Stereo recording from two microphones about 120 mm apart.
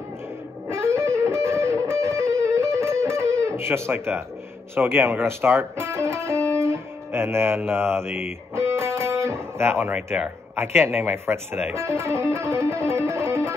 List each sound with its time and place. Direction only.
0.7 s music: 20° right (ahead or behind)
4.7 s speech: 20° right (ahead or behind)